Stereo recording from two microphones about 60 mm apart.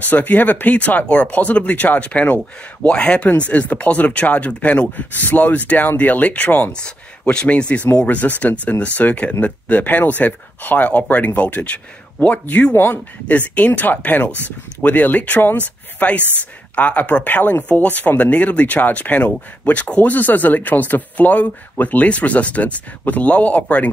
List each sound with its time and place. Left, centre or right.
0.0 s speech: left
6.7 s speech: centre; by 13.0 s left
13.3 s speech: left